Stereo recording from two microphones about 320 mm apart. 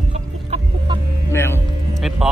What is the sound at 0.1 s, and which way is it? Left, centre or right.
Chicken, centre.